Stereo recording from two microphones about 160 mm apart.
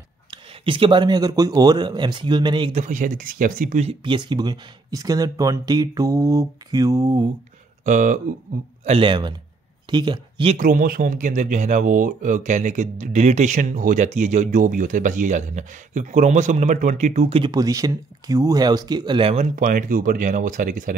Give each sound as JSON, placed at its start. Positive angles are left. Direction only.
{"t": 0.3, "sound": "speech", "side_deg": -30}
{"t": 2.7, "sound": "speech", "side_deg": -50}
{"t": 3.8, "sound": "speech", "side_deg": -30}
{"t": 7.8, "sound": "speech", "side_deg": -55}
{"t": 8.8, "sound": "a man's voice", "side_deg": -35}
{"t": 10.6, "sound": "speech", "side_deg": -60}
{"t": 17.4, "sound": "speech", "side_deg": -25}
{"t": 19.5, "sound": "speech", "side_deg": -55}